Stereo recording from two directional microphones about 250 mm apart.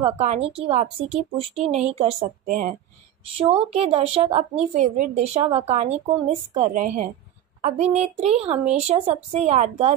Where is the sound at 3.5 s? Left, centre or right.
Right.